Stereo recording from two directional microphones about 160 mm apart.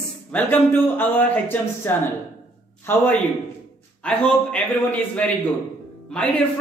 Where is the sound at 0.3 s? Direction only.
10° left (ahead or behind).